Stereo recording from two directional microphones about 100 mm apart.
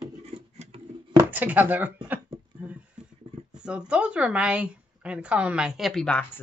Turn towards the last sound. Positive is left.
turn(degrees=15)  # may be behind; listen again after turning